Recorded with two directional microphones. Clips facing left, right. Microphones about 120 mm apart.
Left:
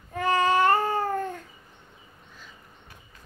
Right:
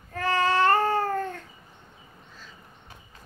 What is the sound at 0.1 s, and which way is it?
Babbling, 15° left (ahead or behind).